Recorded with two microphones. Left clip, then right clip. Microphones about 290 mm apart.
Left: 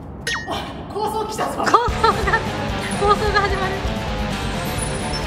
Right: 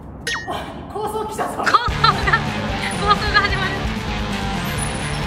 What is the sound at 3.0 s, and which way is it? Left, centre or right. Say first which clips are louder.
Speech: even; centre.